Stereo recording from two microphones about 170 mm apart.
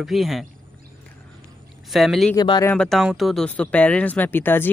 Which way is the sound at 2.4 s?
25° left (ahead or behind).